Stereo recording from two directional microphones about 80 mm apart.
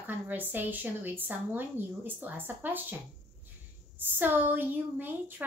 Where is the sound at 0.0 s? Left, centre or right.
Right.